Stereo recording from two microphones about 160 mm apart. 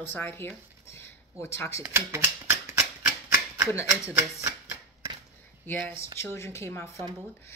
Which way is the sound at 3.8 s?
10° right (ahead or behind).